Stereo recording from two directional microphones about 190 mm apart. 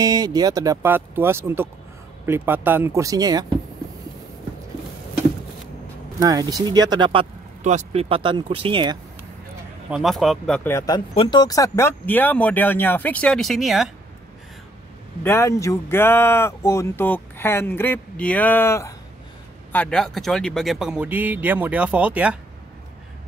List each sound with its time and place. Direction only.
0.0 s speech: 20° right (ahead or behind)
6.2 s speech: 20° right (ahead or behind)
9.8 s speech: centre (ahead or behind)
15.2 s speech: 15° left (ahead or behind); by 22.4 s 5° right (ahead or behind)